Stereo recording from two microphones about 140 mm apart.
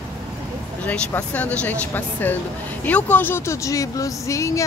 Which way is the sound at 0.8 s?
10° left (ahead or behind).